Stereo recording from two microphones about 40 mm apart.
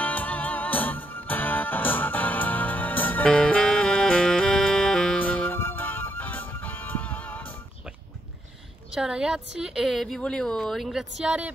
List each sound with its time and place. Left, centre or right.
0.0 s music: left
3.3 s music: left
4.2 s music: centre
4.5 s music: left
4.9 s music: centre
5.2 s music: left
5.6 s music: left
8.9 s a woman's voice: centre
9.8 s a woman's voice: centre
10.8 s a woman's voice: centre
11.3 s speech: right